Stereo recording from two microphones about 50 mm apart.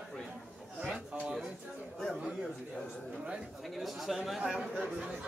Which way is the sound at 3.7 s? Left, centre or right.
Centre.